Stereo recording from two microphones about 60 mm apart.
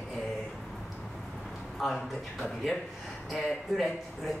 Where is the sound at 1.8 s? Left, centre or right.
Centre.